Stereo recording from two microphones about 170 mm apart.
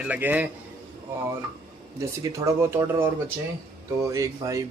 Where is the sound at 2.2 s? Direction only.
15° right (ahead or behind).